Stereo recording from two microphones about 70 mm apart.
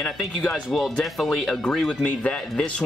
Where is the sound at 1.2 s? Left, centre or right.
Centre.